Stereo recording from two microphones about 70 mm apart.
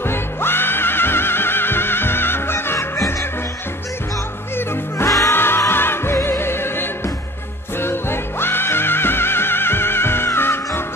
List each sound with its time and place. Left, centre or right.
0.0 s music: left
3.0 s music: left
4.6 s music: left